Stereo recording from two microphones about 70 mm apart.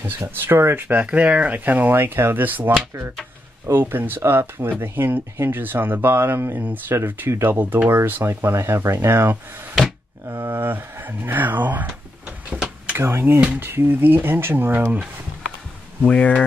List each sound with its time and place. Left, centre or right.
0.0 s speech: right
3.9 s speech: right
10.2 s speech: right
10.5 s speech: right
12.9 s speech: right
13.4 s speech: right
13.7 s speech: right
16.0 s speech: centre